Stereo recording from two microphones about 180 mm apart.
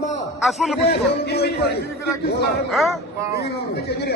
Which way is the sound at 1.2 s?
65° left (ahead or behind).